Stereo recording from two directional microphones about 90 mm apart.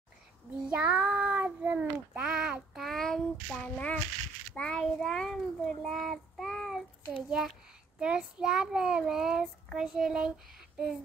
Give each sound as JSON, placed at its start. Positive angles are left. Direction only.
{"t": 0.7, "sound": "child singing", "side_deg": -15}
{"t": 3.7, "sound": "a sound", "side_deg": 15}
{"t": 4.6, "sound": "child singing", "side_deg": 5}
{"t": 7.2, "sound": "a child's voice", "side_deg": -5}
{"t": 8.0, "sound": "child singing", "side_deg": -10}